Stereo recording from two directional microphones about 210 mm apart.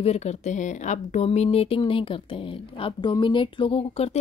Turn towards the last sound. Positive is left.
turn(degrees=30)  # may be behind; listen again after turning